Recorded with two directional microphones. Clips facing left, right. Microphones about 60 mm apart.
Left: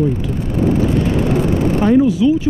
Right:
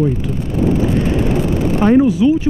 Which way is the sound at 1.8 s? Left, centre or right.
Right.